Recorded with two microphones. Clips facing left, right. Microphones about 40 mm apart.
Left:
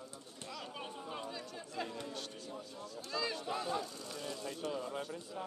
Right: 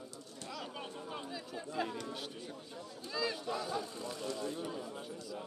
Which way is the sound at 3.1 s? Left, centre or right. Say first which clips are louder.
Right 1 dB; centre.